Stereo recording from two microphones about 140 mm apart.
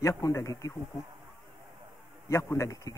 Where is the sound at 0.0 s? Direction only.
20° left (ahead or behind).